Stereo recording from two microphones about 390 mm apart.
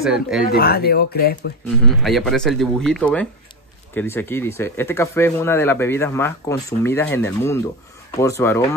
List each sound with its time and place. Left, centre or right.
0.0 s speech: centre
0.5 s speech: left
1.9 s speech: centre